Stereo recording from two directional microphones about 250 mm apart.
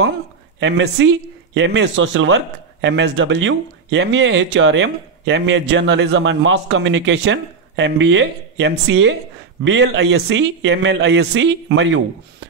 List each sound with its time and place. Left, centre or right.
0.6 s speech: right